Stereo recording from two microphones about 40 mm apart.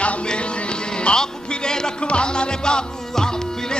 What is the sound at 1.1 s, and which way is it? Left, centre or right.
Music, centre.